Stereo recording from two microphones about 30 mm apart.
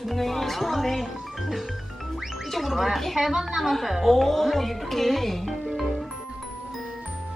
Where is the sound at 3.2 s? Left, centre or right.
Centre.